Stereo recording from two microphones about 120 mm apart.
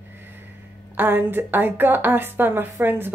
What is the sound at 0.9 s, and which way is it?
A woman's voice, 15° right (ahead or behind).